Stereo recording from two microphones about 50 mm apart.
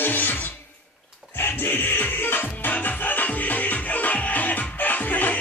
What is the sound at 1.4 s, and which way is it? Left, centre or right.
Music, left.